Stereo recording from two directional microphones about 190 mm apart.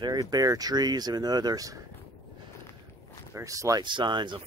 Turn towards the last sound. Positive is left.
turn(degrees=-25)  # may be behind; listen again after turning